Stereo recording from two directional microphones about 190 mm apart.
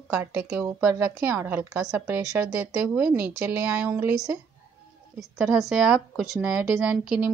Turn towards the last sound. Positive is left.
turn(degrees=-5)  # may be behind; listen again after turning